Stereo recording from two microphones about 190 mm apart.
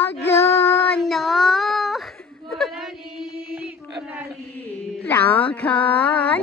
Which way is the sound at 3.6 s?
10° right (ahead or behind).